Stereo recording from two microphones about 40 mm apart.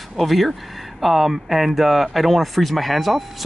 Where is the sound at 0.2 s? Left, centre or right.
Centre.